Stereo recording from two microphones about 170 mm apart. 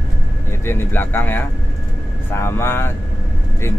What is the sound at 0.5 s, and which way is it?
Speech, 15° left (ahead or behind).